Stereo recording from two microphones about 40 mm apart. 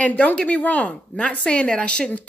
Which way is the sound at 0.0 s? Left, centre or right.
Left.